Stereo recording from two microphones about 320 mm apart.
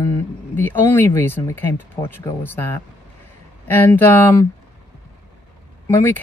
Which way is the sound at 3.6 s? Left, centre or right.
Centre.